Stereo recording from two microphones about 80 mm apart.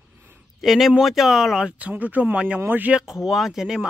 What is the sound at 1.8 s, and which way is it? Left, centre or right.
Speech, centre.